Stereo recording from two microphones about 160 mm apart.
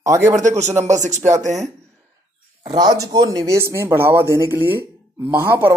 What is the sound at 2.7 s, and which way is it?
Speech, 25° right (ahead or behind).